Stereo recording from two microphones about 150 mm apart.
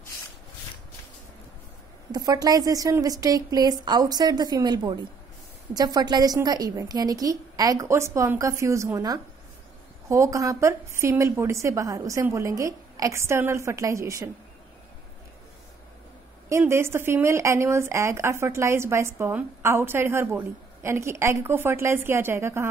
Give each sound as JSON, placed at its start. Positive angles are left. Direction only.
{"t": 2.1, "sound": "a woman's voice", "side_deg": -25}
{"t": 16.4, "sound": "speech", "side_deg": -20}